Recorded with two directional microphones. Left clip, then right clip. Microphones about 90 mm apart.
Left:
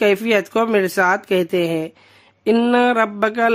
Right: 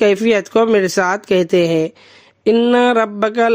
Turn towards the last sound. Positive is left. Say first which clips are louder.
# right 2 dB
turn(degrees=-40)  # may be behind; listen again after turning